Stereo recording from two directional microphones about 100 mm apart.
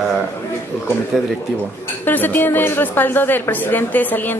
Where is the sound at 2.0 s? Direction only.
20° left (ahead or behind).